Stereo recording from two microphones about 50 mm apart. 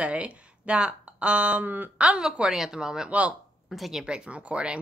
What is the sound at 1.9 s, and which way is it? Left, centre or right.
Speech, right.